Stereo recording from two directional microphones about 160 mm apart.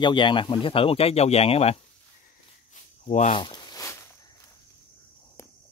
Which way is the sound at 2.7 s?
50° left (ahead or behind).